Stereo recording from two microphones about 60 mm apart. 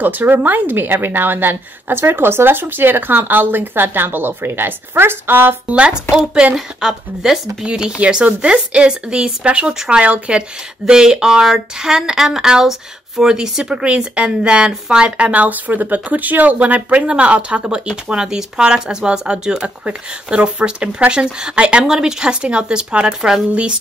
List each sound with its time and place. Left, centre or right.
0.0 s a woman's voice: right
5.7 s speech: centre